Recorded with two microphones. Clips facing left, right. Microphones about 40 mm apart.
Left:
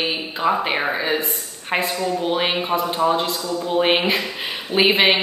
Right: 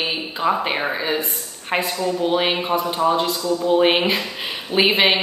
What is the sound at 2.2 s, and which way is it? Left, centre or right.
A woman's voice, centre.